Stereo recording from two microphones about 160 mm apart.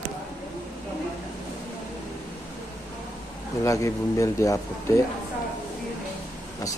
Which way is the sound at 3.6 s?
20° left (ahead or behind).